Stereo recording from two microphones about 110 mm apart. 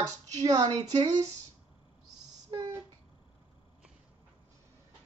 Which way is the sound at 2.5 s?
40° right (ahead or behind).